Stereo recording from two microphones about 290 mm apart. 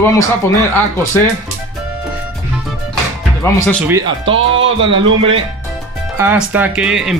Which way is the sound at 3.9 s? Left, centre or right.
Centre.